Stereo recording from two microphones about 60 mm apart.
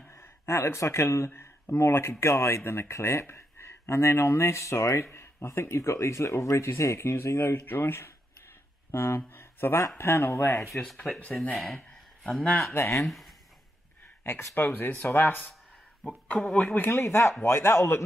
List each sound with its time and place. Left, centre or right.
0.1 s speech: left
11.0 s speech: left
11.5 s a sound: centre
12.7 s speech: left
13.0 s speech: centre
14.2 s speech: left
16.7 s speech: left